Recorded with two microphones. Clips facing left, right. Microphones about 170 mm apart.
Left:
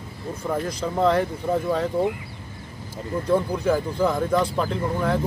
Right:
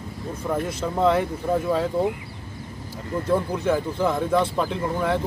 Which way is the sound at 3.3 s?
Centre (ahead or behind).